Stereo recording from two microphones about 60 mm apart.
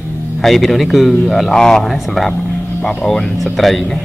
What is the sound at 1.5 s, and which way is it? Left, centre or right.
Speech, centre.